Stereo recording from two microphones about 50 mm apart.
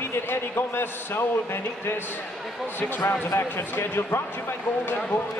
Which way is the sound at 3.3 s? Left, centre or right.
Left.